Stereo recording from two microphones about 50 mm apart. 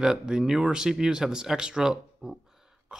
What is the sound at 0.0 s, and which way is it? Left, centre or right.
Speech, centre.